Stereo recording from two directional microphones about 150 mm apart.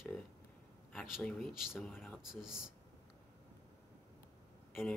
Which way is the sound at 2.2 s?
5° right (ahead or behind).